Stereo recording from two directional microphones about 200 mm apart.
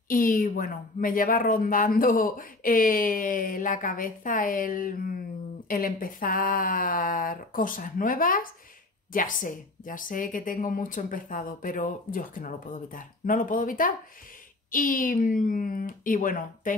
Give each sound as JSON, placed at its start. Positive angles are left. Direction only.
{"t": 0.1, "sound": "speech", "side_deg": 45}